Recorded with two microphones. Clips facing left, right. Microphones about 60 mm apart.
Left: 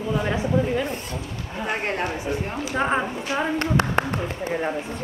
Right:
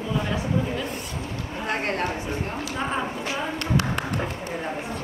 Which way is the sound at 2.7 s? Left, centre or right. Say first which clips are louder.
Left 6 dB; left.